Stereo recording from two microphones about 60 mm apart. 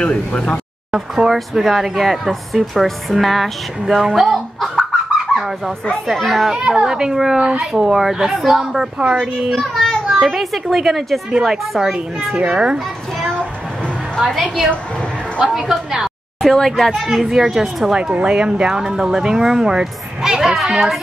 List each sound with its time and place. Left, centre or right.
0.0 s speech: centre
0.9 s speech: centre
6.5 s a child's voice: centre
15.3 s a woman's voice: centre
16.4 s speech: centre
16.9 s speech: centre
18.1 s speech: centre